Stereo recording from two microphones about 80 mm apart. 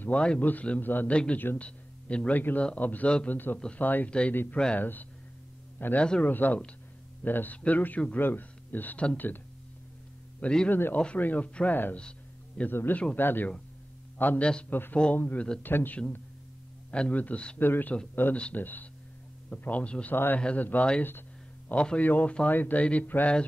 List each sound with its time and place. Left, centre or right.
0.0 s a man's voice: centre
3.8 s a man's voice: left
10.4 s speech: centre
10.7 s a man's voice: left
12.0 s a sound: centre
12.7 s a man's voice: left